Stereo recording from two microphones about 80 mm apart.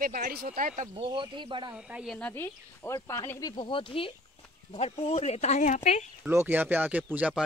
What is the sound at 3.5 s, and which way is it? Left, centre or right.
Speech, left.